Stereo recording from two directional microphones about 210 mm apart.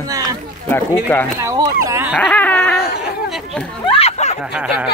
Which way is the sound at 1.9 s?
10° right (ahead or behind).